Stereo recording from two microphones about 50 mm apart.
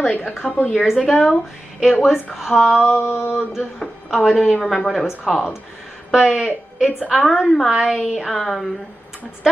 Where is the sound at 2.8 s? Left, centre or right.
Left.